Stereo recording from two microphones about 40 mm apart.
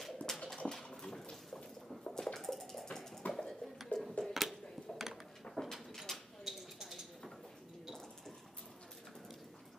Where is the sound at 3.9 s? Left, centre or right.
Left.